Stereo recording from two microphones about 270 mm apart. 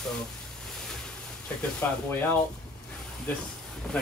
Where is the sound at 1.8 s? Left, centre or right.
Centre.